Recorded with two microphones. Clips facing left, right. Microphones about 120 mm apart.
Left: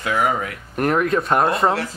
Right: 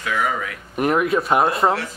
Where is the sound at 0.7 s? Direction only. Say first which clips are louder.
Even; 5° right (ahead or behind).